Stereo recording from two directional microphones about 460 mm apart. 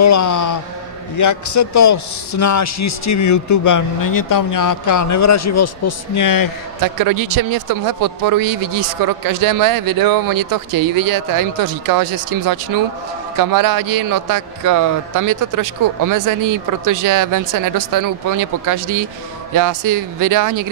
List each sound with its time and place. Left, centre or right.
0.0 s a man's voice: left
7.0 s a man's voice: right